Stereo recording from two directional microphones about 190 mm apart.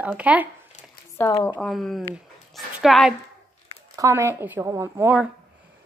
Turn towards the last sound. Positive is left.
turn(degrees=-10)  # may be behind; listen again after turning